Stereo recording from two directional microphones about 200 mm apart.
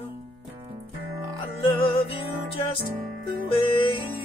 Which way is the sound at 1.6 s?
25° left (ahead or behind).